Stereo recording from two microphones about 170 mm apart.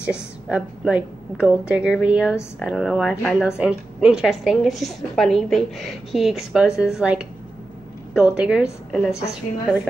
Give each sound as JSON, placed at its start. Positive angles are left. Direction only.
{"t": 0.0, "sound": "a woman's voice", "side_deg": -5}